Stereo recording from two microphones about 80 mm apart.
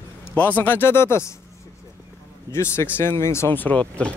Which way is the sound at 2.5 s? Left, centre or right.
Left.